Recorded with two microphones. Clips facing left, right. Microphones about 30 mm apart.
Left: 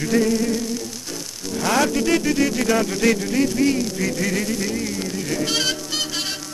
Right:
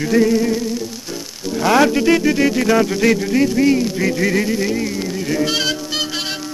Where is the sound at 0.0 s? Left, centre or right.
Centre.